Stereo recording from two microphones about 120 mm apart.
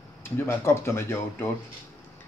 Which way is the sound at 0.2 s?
20° left (ahead or behind).